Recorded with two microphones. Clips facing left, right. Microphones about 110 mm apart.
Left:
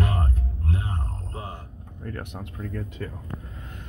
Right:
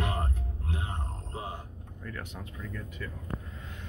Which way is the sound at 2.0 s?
50° left (ahead or behind).